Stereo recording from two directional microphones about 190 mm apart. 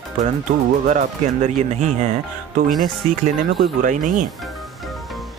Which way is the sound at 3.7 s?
45° right (ahead or behind).